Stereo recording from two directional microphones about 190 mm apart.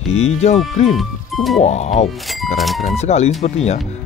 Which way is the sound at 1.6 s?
35° left (ahead or behind).